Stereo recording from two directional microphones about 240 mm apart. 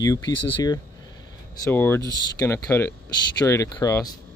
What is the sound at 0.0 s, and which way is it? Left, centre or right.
Speech, centre.